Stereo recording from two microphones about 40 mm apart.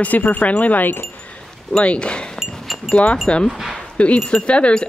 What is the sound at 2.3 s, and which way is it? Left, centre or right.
Chink, centre.